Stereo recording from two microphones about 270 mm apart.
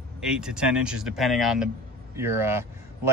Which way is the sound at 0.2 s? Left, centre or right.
Centre.